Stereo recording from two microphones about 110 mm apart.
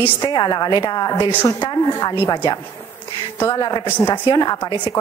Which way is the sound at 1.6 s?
40° left (ahead or behind).